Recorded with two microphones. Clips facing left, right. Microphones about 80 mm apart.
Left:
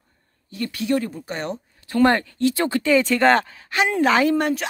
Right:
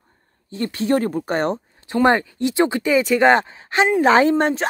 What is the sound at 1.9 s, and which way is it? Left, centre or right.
Speech, centre.